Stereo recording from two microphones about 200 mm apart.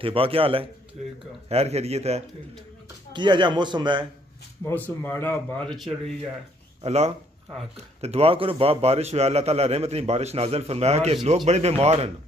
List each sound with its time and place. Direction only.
0.0 s a man's voice: 30° right (ahead or behind)
5.0 s a man's voice: 10° left (ahead or behind)
6.8 s a man's voice: 30° right (ahead or behind)